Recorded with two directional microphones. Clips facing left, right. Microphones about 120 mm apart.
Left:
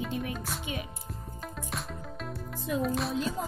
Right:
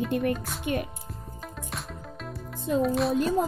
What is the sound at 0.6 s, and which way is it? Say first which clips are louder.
Speech: right 8 dB; 55° right (ahead or behind).